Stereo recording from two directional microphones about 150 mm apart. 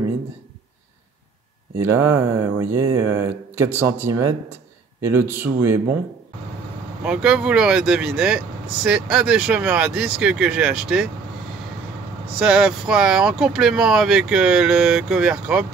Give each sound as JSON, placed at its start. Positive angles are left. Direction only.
{"t": 1.8, "sound": "speech", "side_deg": -20}
{"t": 7.0, "sound": "speech", "side_deg": -5}
{"t": 12.4, "sound": "speech", "side_deg": -5}